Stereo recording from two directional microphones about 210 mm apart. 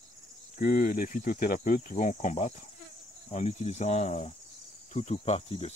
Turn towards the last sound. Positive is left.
turn(degrees=30)  # may be behind; listen again after turning